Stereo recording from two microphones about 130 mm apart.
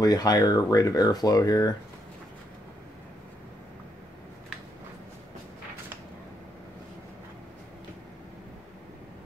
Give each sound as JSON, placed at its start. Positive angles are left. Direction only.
{"t": 0.0, "sound": "speech", "side_deg": 30}